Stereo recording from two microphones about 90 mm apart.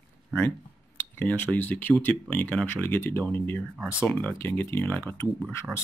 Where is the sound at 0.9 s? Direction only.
20° left (ahead or behind).